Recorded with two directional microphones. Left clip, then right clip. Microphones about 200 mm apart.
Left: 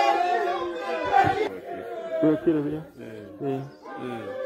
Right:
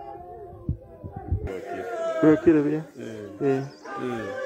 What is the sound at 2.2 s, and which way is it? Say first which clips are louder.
Speech: right 4 dB; 25° right (ahead or behind).